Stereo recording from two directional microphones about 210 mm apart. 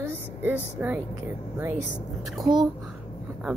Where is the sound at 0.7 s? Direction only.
10° right (ahead or behind).